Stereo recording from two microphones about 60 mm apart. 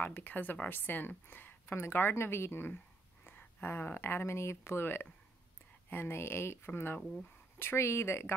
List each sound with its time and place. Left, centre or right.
0.0 s speech: left